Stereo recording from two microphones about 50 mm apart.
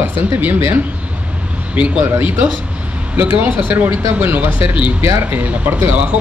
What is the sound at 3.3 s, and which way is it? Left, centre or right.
A woman's voice, right.